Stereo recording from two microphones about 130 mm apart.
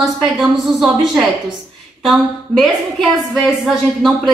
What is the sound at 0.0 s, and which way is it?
A woman's voice, centre (ahead or behind).